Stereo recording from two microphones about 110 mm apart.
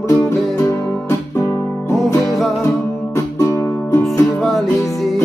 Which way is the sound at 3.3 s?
25° left (ahead or behind).